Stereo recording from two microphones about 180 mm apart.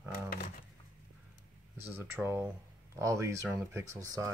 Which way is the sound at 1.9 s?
10° right (ahead or behind).